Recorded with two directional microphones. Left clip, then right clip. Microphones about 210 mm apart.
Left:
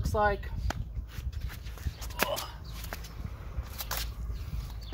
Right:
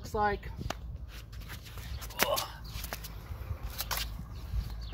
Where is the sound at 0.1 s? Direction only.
15° right (ahead or behind).